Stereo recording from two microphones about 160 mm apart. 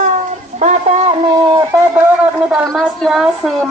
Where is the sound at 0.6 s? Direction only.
45° right (ahead or behind).